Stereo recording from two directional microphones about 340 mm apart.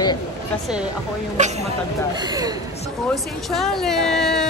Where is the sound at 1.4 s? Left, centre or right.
Right.